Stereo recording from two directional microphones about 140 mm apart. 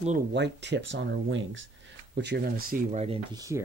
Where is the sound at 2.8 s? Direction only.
50° right (ahead or behind).